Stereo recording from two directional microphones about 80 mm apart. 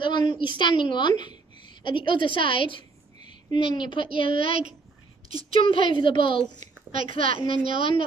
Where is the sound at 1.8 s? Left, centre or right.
Left.